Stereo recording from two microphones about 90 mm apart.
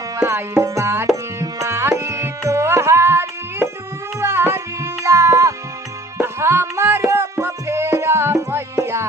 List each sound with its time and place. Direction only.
0.2 s tabla: 30° right (ahead or behind)
4.2 s music: 25° right (ahead or behind)